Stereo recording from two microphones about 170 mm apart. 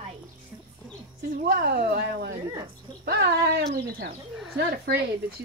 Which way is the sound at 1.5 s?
65° right (ahead or behind).